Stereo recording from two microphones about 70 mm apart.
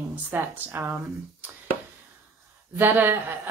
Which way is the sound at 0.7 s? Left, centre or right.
Right.